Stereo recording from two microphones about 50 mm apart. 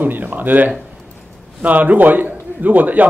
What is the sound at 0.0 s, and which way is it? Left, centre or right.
A man's voice, right.